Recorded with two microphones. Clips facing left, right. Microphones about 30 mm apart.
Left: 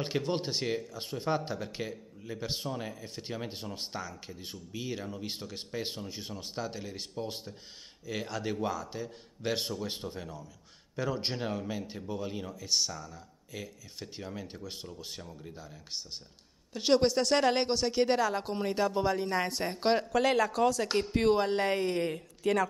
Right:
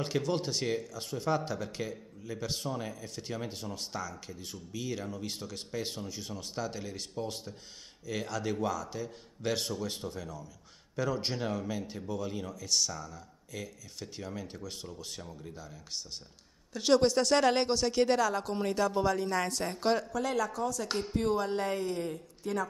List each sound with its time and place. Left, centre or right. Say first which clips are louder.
0.0 s speech: even; left
20.1 s speech: left 5 dB; left
20.9 s speech: left 4 dB; left